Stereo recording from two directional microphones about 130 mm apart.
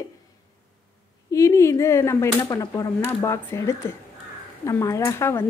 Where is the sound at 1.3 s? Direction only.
25° left (ahead or behind).